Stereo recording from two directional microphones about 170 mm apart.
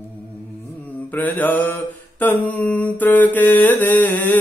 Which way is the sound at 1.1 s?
10° left (ahead or behind).